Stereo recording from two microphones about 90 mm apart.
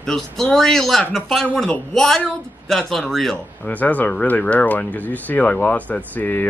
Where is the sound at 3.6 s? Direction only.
15° left (ahead or behind).